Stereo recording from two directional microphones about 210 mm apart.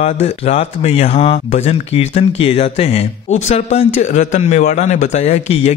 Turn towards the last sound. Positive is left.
turn(degrees=30)  # may be behind; listen again after turning